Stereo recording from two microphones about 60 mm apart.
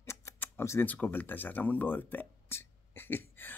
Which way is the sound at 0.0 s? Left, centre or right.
Left.